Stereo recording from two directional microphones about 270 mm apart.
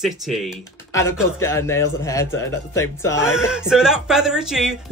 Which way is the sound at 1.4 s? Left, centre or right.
Centre.